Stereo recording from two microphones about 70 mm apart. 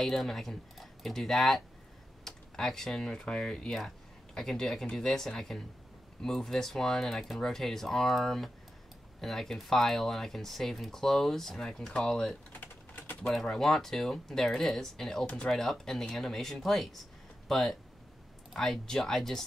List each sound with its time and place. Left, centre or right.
0.0 s speech: centre
12.5 s typing: left
13.3 s speech: centre